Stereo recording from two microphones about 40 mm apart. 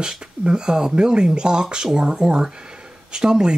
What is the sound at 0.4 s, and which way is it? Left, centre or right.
Speech, right.